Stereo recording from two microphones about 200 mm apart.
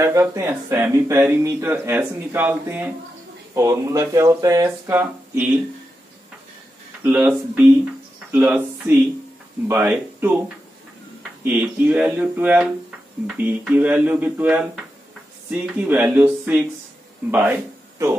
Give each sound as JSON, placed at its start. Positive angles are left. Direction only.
{"t": 0.0, "sound": "speech", "side_deg": -15}
{"t": 7.0, "sound": "speech", "side_deg": -10}
{"t": 11.4, "sound": "speech", "side_deg": -5}